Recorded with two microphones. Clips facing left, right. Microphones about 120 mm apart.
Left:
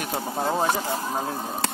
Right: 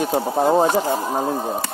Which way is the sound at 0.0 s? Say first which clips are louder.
Right 8 dB; 30° right (ahead or behind).